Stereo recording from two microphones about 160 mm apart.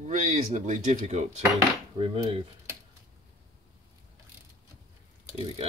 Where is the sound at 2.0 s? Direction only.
35° right (ahead or behind).